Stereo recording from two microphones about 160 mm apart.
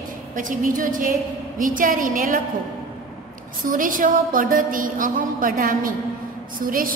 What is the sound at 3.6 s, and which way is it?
Mantra, 55° right (ahead or behind).